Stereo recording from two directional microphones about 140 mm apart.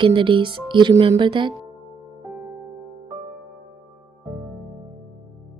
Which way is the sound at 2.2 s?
10° right (ahead or behind).